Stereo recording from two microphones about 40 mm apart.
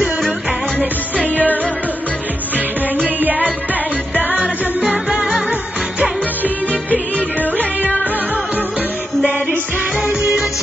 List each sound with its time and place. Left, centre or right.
0.7 s music: left
4.2 s music: right
4.7 s music: right
6.4 s music: left
10.2 s music: right